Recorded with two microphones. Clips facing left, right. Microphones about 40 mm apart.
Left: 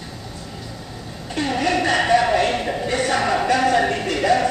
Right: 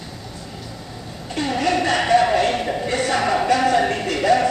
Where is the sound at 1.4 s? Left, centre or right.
Centre.